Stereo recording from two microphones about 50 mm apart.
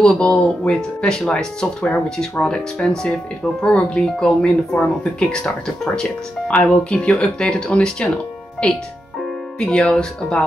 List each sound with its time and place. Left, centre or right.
0.0 s speech: centre
6.5 s speech: left